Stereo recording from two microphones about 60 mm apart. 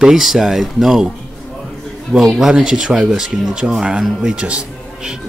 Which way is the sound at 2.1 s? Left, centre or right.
Centre.